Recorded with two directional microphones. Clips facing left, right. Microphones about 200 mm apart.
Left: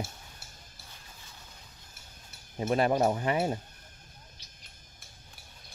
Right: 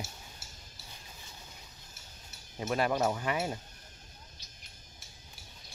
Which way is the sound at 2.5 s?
25° left (ahead or behind).